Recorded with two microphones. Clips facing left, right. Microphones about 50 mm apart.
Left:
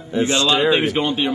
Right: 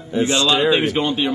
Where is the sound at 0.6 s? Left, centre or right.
Centre.